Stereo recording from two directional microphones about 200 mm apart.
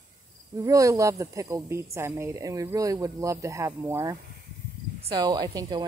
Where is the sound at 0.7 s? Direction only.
15° right (ahead or behind).